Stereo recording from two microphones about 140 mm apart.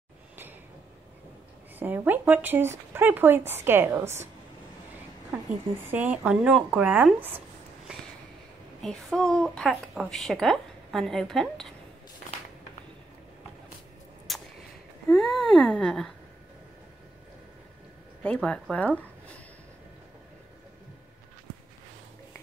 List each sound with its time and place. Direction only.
1.8 s speech: 15° right (ahead or behind)
5.9 s speech: 10° right (ahead or behind)
8.8 s a woman's voice: 5° left (ahead or behind)
14.3 s a sound: centre (ahead or behind)
18.2 s speech: 10° left (ahead or behind)